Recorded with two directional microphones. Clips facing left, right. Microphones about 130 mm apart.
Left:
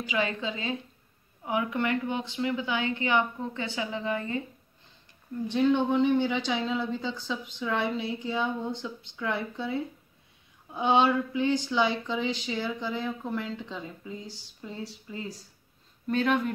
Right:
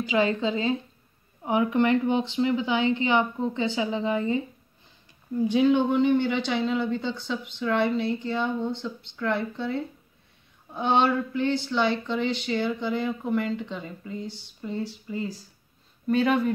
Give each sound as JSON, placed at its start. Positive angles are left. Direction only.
{"t": 0.0, "sound": "a woman's voice", "side_deg": -35}
{"t": 5.4, "sound": "speech", "side_deg": -10}